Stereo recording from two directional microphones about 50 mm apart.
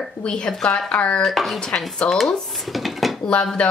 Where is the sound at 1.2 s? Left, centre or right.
Centre.